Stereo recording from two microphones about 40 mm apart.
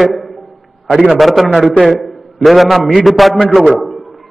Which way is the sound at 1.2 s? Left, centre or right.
Centre.